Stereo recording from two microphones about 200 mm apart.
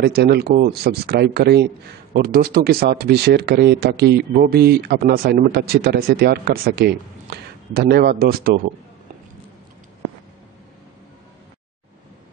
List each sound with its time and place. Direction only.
0.0 s speech: 55° right (ahead or behind)